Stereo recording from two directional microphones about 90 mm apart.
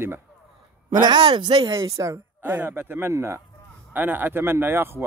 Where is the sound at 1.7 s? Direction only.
35° right (ahead or behind).